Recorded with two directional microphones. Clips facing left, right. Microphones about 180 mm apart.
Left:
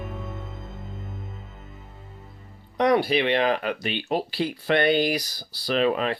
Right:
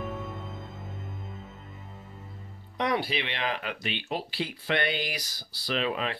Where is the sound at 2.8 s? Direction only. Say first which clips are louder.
Left 8 dB; 45° left (ahead or behind).